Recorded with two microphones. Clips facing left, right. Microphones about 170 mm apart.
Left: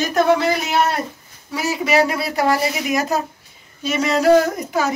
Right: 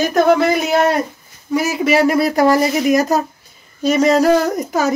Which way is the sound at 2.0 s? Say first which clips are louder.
Right 6 dB; 45° right (ahead or behind).